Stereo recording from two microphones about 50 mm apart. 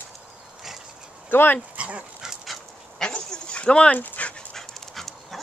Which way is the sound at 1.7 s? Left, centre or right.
Right.